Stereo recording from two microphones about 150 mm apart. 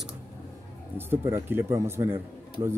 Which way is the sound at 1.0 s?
15° right (ahead or behind).